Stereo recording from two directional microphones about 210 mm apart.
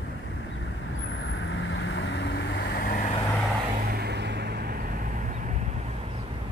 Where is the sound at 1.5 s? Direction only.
65° left (ahead or behind); by 3.1 s 45° left (ahead or behind).